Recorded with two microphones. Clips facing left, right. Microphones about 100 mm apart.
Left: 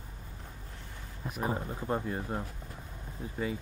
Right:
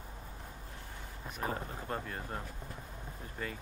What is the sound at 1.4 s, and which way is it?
Speech, 15° left (ahead or behind).